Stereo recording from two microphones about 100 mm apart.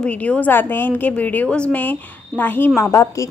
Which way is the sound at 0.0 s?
15° left (ahead or behind).